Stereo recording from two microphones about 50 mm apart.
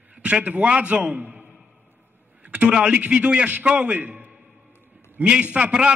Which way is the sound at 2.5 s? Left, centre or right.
Right.